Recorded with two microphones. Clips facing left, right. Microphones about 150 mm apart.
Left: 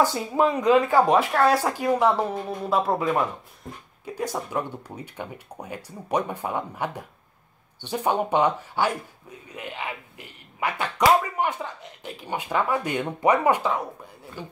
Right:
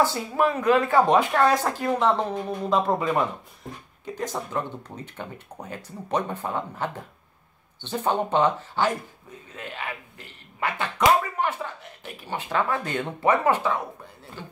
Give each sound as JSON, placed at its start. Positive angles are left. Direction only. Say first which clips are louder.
{"t": 0.0, "sound": "speech", "louder": "left 1 dB", "side_deg": 15}
{"t": 11.4, "sound": "slap", "louder": "left 1 dB", "side_deg": 15}
{"t": 12.0, "sound": "speech", "louder": "left 2 dB", "side_deg": 15}